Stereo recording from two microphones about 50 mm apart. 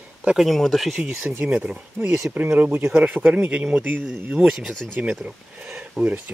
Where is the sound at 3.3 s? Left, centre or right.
Right.